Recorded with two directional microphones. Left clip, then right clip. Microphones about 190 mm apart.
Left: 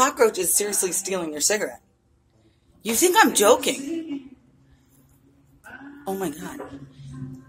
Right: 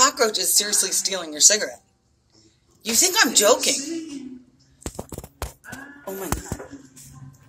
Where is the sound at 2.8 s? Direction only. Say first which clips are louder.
Left 2 dB; 15° left (ahead or behind).